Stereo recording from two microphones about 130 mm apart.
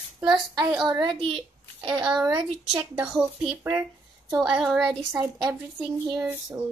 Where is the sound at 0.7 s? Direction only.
Centre (ahead or behind).